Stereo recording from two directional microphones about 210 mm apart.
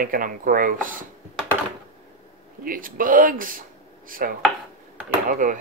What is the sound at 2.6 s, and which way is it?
Speech, 40° right (ahead or behind).